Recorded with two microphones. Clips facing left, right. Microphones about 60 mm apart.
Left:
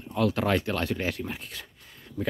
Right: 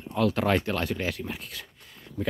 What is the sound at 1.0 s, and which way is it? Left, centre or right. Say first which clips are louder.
Speech: even; centre.